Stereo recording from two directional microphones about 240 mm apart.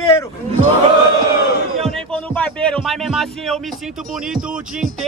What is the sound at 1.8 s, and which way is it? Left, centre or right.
Music, centre.